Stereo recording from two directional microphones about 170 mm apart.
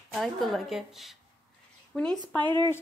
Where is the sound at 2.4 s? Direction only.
25° right (ahead or behind).